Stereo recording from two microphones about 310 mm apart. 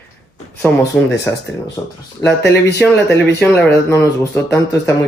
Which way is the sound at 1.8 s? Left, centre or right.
Centre.